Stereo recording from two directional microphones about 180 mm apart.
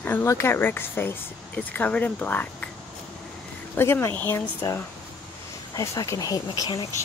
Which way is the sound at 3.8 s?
15° left (ahead or behind).